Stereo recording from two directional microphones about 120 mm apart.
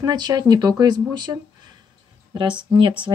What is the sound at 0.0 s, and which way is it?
Speech, 35° right (ahead or behind).